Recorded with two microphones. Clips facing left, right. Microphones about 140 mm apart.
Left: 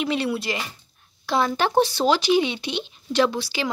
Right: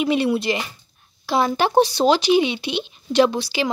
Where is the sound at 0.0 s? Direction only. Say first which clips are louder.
Right 5 dB; 15° right (ahead or behind).